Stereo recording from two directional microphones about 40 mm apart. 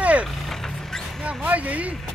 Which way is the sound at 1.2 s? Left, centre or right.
Right.